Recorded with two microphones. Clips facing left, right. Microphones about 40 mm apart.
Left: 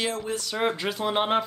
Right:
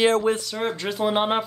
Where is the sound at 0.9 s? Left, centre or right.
Centre.